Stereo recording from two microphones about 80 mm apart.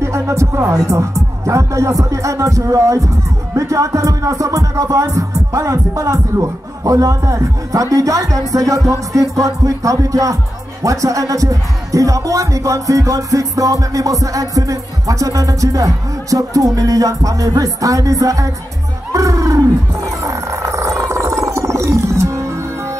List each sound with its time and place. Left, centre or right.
0.0 s speech: right
3.5 s music: right
19.1 s a sound: right
20.2 s wild animals: right